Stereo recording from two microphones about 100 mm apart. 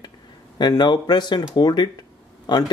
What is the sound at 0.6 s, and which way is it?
Speech, 45° left (ahead or behind).